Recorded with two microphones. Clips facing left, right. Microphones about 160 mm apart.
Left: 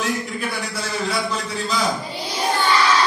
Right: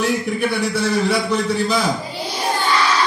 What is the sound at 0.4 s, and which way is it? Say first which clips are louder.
Speech: right 7 dB; 70° right (ahead or behind).